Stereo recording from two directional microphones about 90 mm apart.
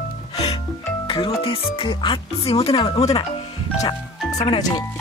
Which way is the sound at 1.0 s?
75° left (ahead or behind).